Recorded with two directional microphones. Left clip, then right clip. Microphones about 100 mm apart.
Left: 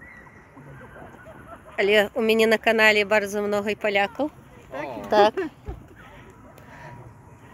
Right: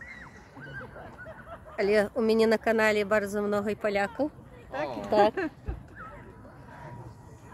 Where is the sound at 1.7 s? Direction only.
15° left (ahead or behind).